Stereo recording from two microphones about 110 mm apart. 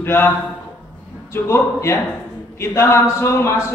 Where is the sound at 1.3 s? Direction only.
25° left (ahead or behind).